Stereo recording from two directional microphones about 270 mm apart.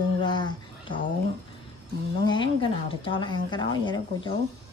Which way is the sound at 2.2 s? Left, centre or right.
Centre.